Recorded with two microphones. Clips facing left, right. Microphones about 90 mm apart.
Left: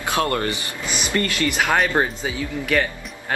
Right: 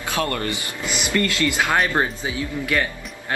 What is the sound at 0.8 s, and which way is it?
Speech, 20° right (ahead or behind).